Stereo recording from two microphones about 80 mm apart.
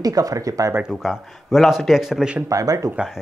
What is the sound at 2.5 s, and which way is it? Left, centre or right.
Speech, right.